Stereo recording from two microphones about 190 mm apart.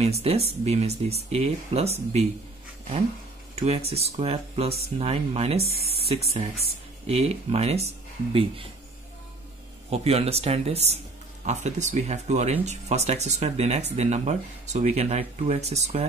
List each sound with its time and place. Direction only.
0.0 s speech: 35° right (ahead or behind)
3.5 s speech: 35° right (ahead or behind)
9.8 s speech: 35° right (ahead or behind)